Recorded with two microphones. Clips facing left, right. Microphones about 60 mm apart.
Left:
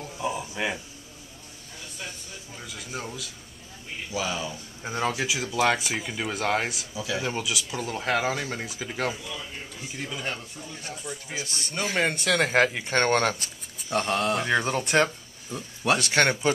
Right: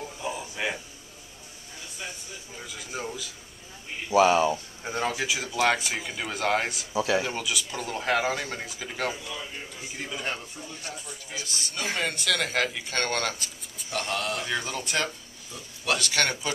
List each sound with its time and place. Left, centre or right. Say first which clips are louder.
0.2 s a sound: left 3 dB; centre
2.5 s speech: even; centre
4.1 s speech: right 11 dB; right
4.8 s speech: left 1 dB; centre
7.0 s speech: right 6 dB; right
7.2 s speech: left 1 dB; centre
11.1 s speech: left 4 dB; centre
11.8 s speech: left 4 dB; centre
12.8 s speech: left 6 dB; left
13.8 s speech: left 5 dB; centre
14.9 s speech: left 8 dB; left